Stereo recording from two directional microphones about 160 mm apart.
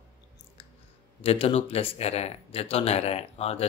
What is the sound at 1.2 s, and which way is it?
Speech, 35° left (ahead or behind).